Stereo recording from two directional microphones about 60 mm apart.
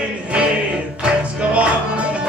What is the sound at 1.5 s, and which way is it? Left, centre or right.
Music, right.